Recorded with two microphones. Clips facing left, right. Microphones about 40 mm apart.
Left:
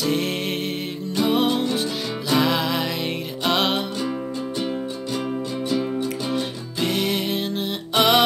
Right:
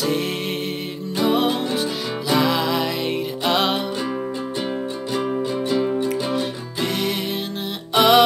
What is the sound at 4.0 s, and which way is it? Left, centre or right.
Music, centre.